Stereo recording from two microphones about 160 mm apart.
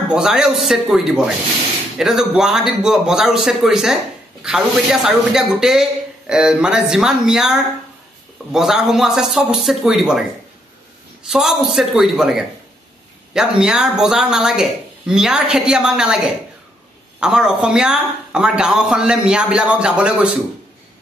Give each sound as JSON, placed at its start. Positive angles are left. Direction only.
{"t": 0.1, "sound": "a man's voice", "side_deg": -5}
{"t": 11.2, "sound": "a man's voice", "side_deg": -5}